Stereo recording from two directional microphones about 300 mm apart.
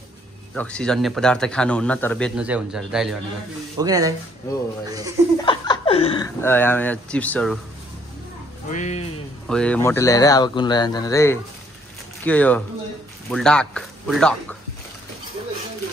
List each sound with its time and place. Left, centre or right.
0.6 s speech: centre
5.4 s speech: centre
8.6 s speech: left
9.5 s speech: centre